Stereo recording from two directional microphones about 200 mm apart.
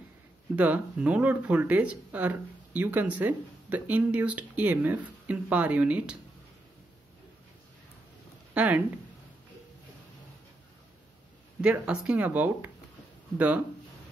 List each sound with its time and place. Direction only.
0.6 s speech: 5° right (ahead or behind)
8.5 s speech: 10° right (ahead or behind)
11.6 s speech: 5° right (ahead or behind)